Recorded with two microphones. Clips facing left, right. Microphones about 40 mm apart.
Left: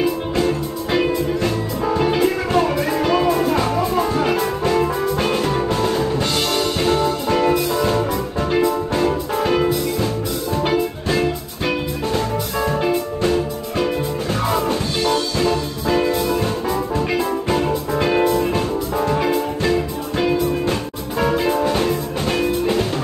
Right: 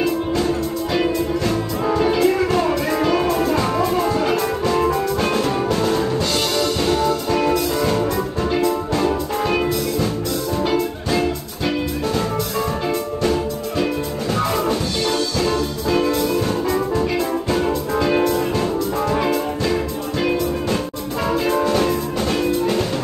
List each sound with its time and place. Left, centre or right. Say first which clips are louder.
2.0 s music: right 2 dB; centre
7.0 s music: left 1 dB; left
7.7 s music: even; centre
12.1 s music: left 2 dB; centre
14.5 s music: even; centre
18.6 s music: even; centre
21.2 s music: left 1 dB; centre